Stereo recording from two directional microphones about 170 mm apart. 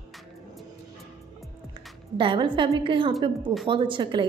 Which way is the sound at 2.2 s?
30° right (ahead or behind).